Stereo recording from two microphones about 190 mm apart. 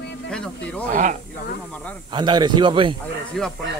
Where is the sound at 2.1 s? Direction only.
25° right (ahead or behind).